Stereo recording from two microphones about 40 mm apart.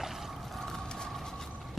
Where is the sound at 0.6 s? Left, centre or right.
Centre.